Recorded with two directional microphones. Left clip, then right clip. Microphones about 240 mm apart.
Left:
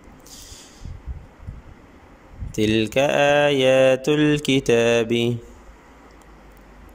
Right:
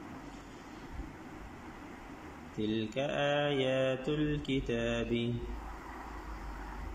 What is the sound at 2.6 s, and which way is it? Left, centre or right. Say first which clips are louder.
Mantra: left 16 dB; left.